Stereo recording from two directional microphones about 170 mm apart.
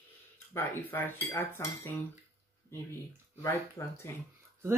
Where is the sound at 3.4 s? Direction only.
15° left (ahead or behind).